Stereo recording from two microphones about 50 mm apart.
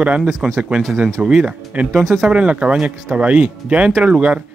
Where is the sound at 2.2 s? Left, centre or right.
Right.